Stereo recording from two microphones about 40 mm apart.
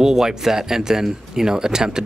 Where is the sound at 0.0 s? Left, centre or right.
Centre.